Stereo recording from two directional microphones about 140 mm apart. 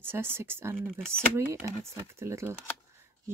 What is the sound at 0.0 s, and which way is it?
Speech, 15° right (ahead or behind).